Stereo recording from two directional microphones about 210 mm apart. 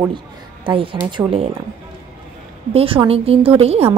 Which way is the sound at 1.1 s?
25° right (ahead or behind).